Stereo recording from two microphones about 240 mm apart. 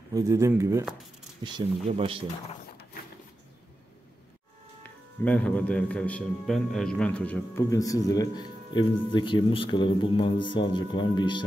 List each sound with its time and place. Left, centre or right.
0.1 s speech: centre
1.4 s speech: right
5.2 s a man's voice: centre